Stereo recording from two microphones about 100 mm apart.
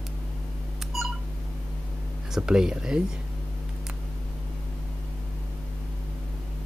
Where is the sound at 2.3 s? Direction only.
5° right (ahead or behind).